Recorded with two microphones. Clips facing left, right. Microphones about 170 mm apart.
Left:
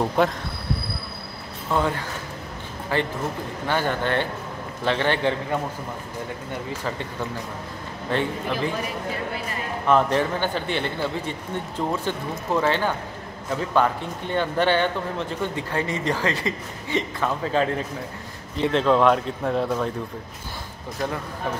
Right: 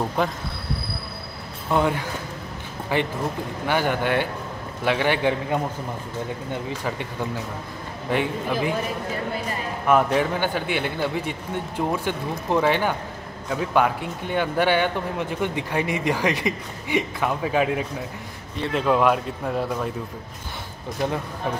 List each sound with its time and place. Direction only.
0.2 s speech: centre (ahead or behind)
1.7 s speech: 15° right (ahead or behind)
8.1 s speech: 15° right (ahead or behind)
9.8 s speech: 10° right (ahead or behind)